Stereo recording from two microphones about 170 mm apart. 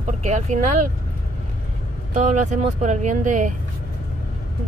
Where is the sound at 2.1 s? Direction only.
45° right (ahead or behind).